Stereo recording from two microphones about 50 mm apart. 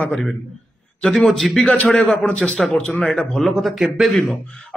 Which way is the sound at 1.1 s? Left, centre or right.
Centre.